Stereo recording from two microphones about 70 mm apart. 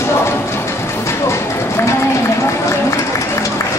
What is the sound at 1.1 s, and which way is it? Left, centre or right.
Run, left.